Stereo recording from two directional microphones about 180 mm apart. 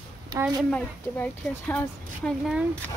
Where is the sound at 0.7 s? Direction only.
10° left (ahead or behind).